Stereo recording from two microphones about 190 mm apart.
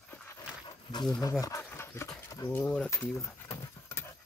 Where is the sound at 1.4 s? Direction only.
15° left (ahead or behind).